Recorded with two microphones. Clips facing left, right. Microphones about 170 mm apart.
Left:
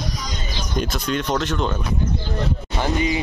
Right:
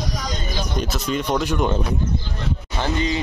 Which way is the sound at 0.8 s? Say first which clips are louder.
Left 2 dB; 5° right (ahead or behind).